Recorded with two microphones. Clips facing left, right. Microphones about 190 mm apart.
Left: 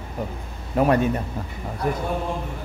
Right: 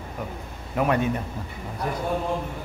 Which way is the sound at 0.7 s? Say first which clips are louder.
Left 4 dB; 35° left (ahead or behind).